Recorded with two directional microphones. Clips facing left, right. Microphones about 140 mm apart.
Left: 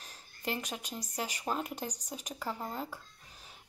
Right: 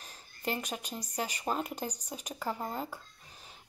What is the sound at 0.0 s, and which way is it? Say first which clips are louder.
Speech: right 2 dB; centre (ahead or behind).